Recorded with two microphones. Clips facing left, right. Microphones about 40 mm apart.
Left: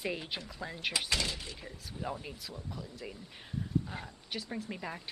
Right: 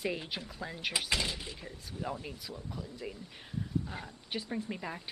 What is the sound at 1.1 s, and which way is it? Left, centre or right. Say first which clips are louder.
Speech: right 1 dB; centre.